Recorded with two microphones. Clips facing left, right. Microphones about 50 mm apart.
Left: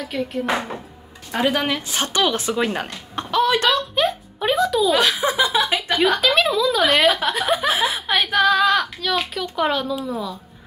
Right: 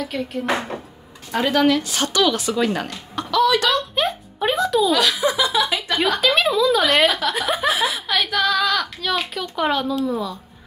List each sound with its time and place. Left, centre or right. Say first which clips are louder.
0.0 s a child's voice: left 1 dB; centre; by 3.7 s left
3.7 s a sound: left 1 dB; centre
4.9 s speech: even; left
6.0 s a child's voice: left 1 dB; centre
7.9 s a sound: left 2 dB; left
9.0 s a child's voice: left 1 dB; centre